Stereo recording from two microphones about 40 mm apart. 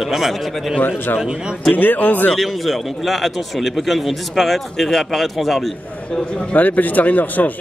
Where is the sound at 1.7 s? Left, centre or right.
Left.